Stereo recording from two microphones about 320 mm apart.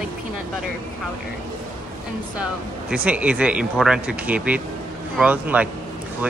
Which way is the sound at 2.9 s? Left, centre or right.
Centre.